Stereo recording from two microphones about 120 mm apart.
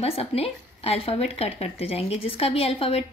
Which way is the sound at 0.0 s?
55° left (ahead or behind).